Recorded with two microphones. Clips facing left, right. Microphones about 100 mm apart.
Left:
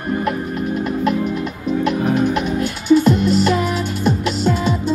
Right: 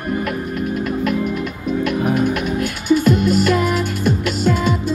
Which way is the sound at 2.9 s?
30° left (ahead or behind).